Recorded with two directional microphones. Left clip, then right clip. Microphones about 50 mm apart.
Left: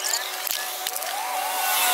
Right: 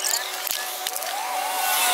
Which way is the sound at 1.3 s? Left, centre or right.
Centre.